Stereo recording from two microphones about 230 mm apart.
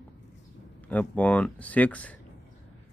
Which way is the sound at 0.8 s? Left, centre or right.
Centre.